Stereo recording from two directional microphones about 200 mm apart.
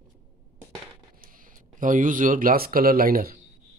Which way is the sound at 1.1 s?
45° right (ahead or behind).